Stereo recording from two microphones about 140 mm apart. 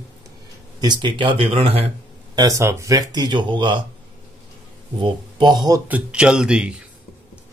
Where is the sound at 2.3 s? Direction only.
25° right (ahead or behind).